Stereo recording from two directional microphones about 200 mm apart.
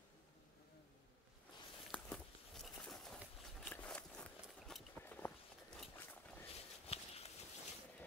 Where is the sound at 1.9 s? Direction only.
Centre (ahead or behind).